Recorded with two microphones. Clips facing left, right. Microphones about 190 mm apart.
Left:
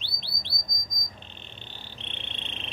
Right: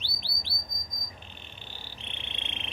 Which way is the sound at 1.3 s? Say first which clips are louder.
Left 1 dB; 10° right (ahead or behind).